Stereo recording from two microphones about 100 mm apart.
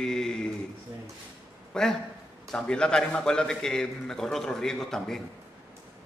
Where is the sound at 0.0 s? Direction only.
5° left (ahead or behind).